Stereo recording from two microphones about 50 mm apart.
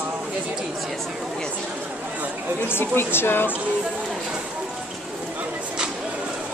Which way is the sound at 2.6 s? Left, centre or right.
Left.